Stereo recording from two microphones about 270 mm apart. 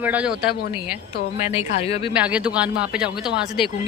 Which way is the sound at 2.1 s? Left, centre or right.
Centre.